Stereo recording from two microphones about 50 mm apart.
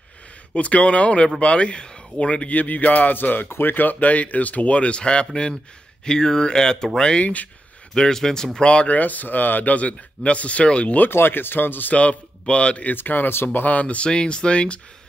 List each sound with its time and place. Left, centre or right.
0.6 s speech: left
7.9 s speech: centre; by 11.1 s left
11.1 s speech: left
11.9 s speech: left
12.9 s speech: left
13.7 s speech: left